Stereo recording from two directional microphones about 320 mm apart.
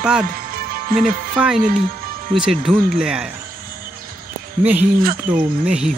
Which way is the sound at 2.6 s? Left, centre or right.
Centre.